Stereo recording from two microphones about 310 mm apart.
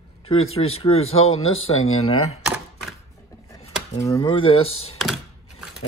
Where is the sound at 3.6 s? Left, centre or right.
Centre.